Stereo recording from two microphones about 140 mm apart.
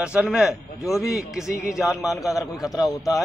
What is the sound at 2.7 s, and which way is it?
Speech, 25° left (ahead or behind).